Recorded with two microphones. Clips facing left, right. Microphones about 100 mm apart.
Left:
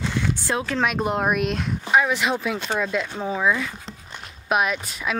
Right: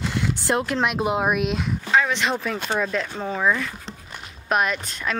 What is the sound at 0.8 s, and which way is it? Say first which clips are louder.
Speech: even; 5° right (ahead or behind).